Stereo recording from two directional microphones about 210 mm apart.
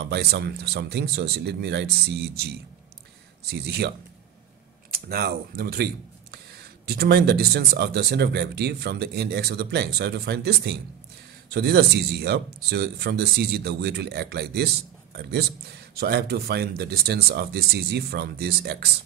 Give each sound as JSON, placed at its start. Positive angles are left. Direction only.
{"t": 0.0, "sound": "speech", "side_deg": -50}
{"t": 4.9, "sound": "speech", "side_deg": -45}